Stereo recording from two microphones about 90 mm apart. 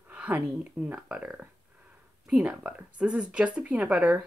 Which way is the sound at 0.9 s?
15° right (ahead or behind).